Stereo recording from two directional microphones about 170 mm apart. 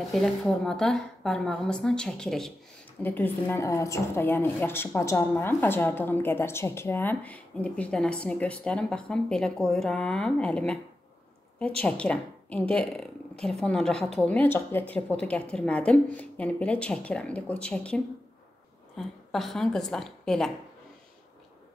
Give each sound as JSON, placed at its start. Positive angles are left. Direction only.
{"t": 0.1, "sound": "a woman's voice", "side_deg": 0}
{"t": 11.8, "sound": "a woman's voice", "side_deg": 5}